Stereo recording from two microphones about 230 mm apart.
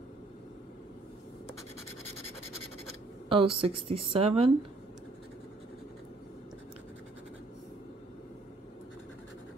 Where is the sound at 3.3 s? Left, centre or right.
Right.